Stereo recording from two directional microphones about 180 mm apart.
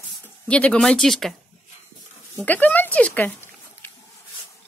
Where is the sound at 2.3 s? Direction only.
10° left (ahead or behind).